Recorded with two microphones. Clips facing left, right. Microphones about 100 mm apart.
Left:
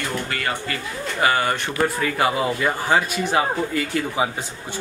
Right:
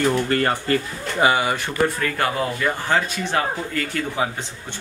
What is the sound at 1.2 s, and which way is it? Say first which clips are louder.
Speech: right 1 dB; 15° right (ahead or behind).